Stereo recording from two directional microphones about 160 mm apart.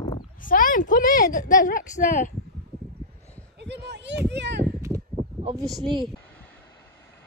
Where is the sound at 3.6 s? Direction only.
90° right.